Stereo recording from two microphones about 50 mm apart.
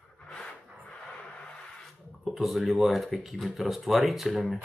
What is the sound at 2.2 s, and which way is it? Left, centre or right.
Speech, centre.